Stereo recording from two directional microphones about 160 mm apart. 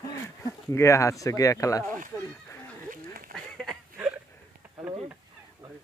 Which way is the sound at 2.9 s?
65° right (ahead or behind).